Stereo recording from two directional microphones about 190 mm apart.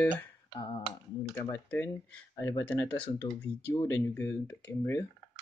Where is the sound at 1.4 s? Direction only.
10° left (ahead or behind).